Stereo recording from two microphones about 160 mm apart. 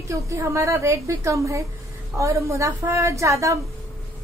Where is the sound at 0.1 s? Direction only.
20° right (ahead or behind).